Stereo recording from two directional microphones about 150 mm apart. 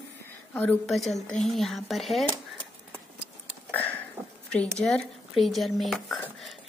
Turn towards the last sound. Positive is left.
turn(degrees=0)  # may be behind; listen again after turning